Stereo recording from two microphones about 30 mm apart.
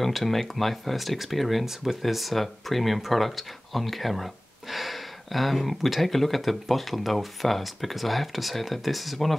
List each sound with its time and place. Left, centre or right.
0.0 s speech: centre